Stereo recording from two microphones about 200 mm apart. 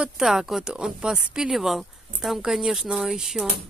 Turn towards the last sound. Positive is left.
turn(degrees=0)  # may be behind; listen again after turning